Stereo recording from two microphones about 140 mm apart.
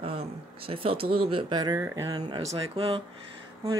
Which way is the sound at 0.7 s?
40° right (ahead or behind).